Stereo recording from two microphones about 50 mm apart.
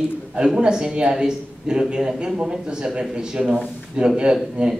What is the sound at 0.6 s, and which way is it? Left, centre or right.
A man's voice, centre.